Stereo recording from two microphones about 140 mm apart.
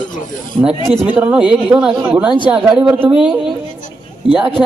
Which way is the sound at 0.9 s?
5° right (ahead or behind).